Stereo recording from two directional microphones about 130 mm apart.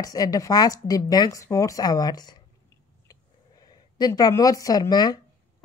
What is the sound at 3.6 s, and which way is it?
A woman's voice, 30° left (ahead or behind).